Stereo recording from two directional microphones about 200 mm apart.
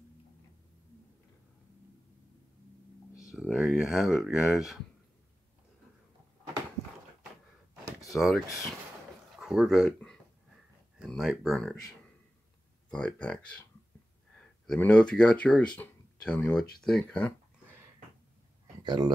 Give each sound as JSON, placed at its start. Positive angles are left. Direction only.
{"t": 3.3, "sound": "speech", "side_deg": -5}
{"t": 8.2, "sound": "speech", "side_deg": 0}
{"t": 12.9, "sound": "speech", "side_deg": 5}
{"t": 14.7, "sound": "speech", "side_deg": 5}
{"t": 18.8, "sound": "speech", "side_deg": -20}